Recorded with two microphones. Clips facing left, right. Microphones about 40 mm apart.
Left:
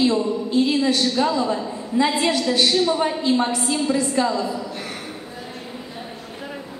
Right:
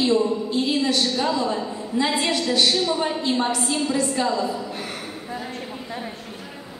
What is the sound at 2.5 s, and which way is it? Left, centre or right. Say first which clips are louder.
Speech: even; left.